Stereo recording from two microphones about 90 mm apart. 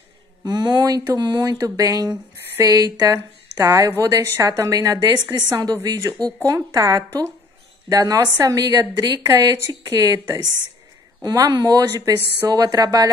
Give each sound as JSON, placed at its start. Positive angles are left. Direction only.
{"t": 0.4, "sound": "a woman's voice", "side_deg": -50}
{"t": 9.2, "sound": "a woman's voice", "side_deg": -35}
{"t": 11.5, "sound": "a woman's voice", "side_deg": -40}